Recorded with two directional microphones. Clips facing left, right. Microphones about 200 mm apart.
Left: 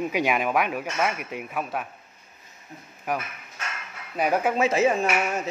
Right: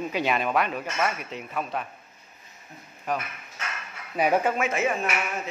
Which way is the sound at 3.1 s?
10° left (ahead or behind).